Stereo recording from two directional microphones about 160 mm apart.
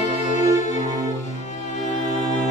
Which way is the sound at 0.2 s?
50° left (ahead or behind).